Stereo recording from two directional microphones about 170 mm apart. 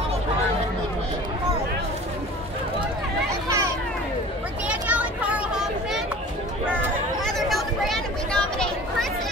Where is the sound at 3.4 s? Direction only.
15° right (ahead or behind).